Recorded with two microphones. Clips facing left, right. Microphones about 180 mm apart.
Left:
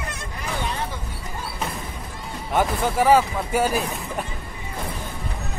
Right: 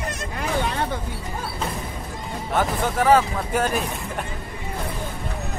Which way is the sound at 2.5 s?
10° left (ahead or behind).